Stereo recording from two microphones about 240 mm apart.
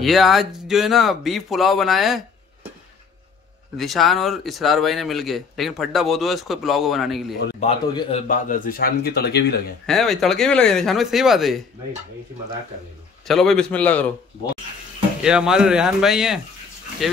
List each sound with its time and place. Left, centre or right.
0.0 s speech: centre
3.7 s speech: centre
7.6 s a man's voice: left
8.3 s speech: left
9.8 s speech: centre
13.3 s speech: centre
15.2 s speech: centre